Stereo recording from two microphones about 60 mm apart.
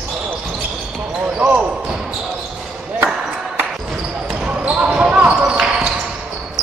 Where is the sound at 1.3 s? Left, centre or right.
Right.